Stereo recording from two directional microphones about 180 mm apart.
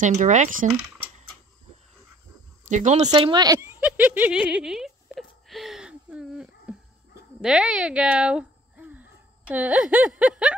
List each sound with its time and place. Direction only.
0.0 s speech: 45° right (ahead or behind)
2.7 s speech: 40° right (ahead or behind)
3.1 s speech: 25° right (ahead or behind)
3.8 s a sound: 10° right (ahead or behind)
7.4 s speech: 5° right (ahead or behind)